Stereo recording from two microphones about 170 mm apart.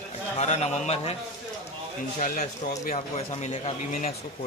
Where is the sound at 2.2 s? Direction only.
50° left (ahead or behind).